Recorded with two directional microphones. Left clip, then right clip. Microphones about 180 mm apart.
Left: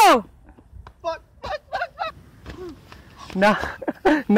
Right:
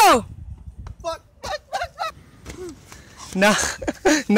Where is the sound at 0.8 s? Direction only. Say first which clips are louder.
Left 1 dB; 5° right (ahead or behind).